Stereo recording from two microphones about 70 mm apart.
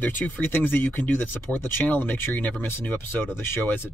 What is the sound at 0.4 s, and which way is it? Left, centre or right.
Speech, left.